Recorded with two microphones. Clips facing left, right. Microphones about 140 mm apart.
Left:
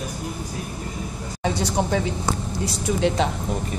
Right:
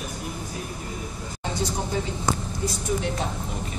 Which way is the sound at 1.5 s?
70° left (ahead or behind).